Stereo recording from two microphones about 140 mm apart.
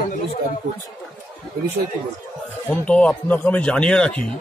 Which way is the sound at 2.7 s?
10° left (ahead or behind).